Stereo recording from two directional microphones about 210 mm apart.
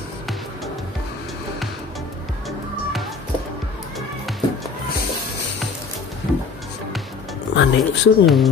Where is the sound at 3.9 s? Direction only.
Centre (ahead or behind).